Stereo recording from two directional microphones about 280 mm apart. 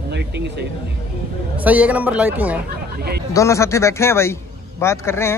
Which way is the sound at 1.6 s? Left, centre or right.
Centre.